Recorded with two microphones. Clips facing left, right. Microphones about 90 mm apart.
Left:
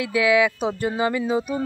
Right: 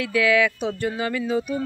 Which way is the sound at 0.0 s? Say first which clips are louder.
Left 1 dB; 20° left (ahead or behind).